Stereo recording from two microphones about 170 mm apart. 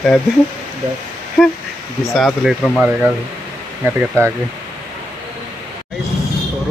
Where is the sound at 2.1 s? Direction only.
Centre (ahead or behind).